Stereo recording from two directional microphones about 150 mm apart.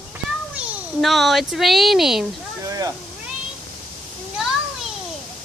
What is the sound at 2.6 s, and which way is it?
Cat, 20° right (ahead or behind).